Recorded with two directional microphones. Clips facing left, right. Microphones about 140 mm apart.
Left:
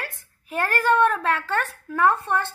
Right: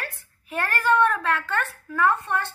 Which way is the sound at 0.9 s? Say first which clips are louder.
Even; 30° left (ahead or behind).